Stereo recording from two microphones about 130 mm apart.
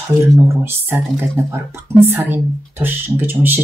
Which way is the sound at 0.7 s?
15° right (ahead or behind).